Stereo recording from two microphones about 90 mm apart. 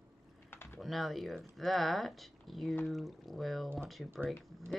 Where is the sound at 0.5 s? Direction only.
25° left (ahead or behind).